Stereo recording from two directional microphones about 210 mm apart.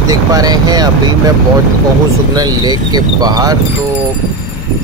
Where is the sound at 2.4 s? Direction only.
20° right (ahead or behind).